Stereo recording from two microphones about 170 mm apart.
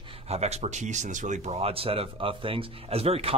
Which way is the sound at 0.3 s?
40° right (ahead or behind).